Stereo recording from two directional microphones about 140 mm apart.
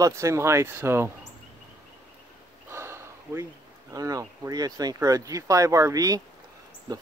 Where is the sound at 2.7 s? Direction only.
20° right (ahead or behind).